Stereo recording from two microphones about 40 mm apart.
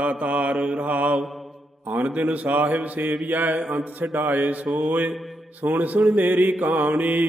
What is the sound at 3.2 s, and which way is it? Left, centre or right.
Mantra, right.